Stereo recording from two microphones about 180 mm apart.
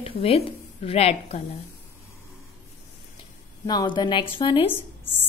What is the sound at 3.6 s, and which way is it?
A woman's voice, 25° left (ahead or behind).